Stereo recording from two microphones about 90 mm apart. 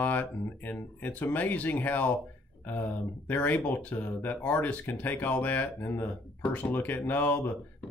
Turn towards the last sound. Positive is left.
turn(degrees=20)  # may be behind; listen again after turning